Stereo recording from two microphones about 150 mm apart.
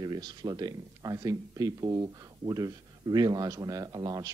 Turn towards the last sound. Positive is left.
turn(degrees=-25)  # may be behind; listen again after turning